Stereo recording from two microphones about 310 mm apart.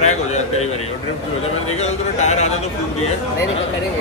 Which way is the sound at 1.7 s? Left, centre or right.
Left.